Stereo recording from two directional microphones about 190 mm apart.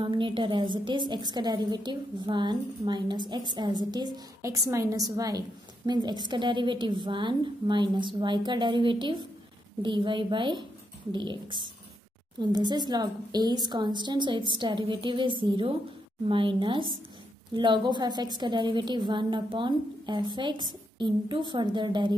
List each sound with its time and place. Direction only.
0.0 s a woman's voice: 25° right (ahead or behind)